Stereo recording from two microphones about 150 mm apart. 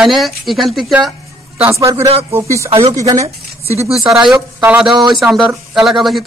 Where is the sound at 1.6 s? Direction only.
20° right (ahead or behind).